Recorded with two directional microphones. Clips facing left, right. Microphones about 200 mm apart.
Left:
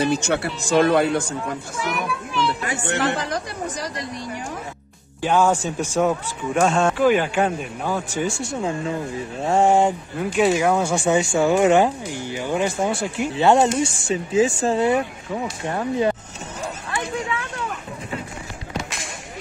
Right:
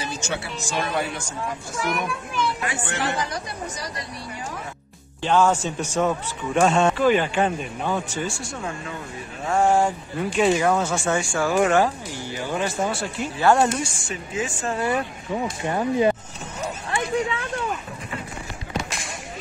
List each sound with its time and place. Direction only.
0.0 s speech: 60° left (ahead or behind)
2.6 s speech: 40° left (ahead or behind)
5.2 s speech: 10° left (ahead or behind)
8.5 s speech: 25° left (ahead or behind)
10.1 s speech: 5° left (ahead or behind); by 15.0 s 25° left (ahead or behind)
15.6 s speech: 10° right (ahead or behind)
16.9 s a sound: 35° right (ahead or behind)